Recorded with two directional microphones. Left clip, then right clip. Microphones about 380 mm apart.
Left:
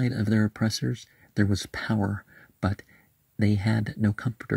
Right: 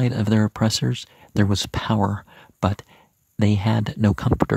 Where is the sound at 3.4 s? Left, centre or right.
Centre.